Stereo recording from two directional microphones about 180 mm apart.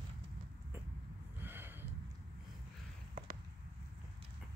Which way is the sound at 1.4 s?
10° right (ahead or behind).